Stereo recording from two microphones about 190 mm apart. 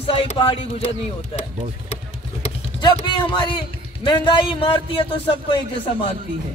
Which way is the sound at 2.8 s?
25° left (ahead or behind).